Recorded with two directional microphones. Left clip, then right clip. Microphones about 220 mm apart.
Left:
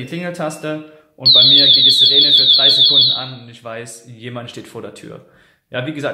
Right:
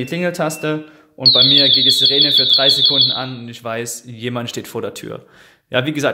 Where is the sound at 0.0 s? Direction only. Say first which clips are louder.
Right 4 dB; 45° right (ahead or behind).